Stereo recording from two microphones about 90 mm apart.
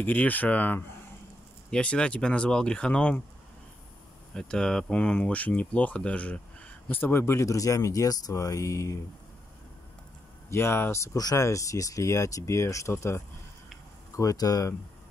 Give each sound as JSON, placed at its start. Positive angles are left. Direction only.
{"t": 0.0, "sound": "speech", "side_deg": 20}
{"t": 4.3, "sound": "speech", "side_deg": 10}
{"t": 10.5, "sound": "speech", "side_deg": 30}
{"t": 11.1, "sound": "speech", "side_deg": 40}
{"t": 14.1, "sound": "speech", "side_deg": 40}